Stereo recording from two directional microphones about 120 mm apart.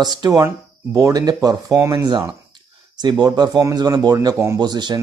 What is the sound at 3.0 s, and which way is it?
Speech, 35° right (ahead or behind).